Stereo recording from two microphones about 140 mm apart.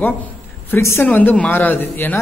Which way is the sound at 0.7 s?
20° left (ahead or behind).